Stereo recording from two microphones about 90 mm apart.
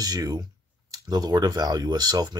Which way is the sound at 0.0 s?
45° right (ahead or behind).